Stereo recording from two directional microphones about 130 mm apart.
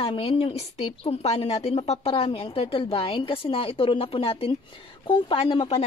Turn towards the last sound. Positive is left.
turn(degrees=45)  # may be behind; listen again after turning